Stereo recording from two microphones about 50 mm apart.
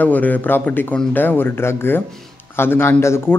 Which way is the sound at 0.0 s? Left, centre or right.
Left.